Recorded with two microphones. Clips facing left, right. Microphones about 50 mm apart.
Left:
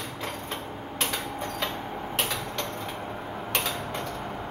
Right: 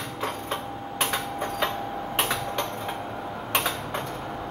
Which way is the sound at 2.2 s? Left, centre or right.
Right.